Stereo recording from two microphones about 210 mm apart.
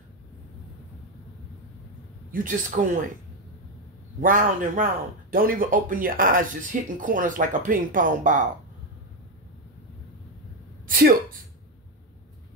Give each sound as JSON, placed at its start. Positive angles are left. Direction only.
{"t": 2.3, "sound": "speech", "side_deg": -40}
{"t": 4.2, "sound": "speech", "side_deg": -40}
{"t": 10.9, "sound": "a woman's voice", "side_deg": -45}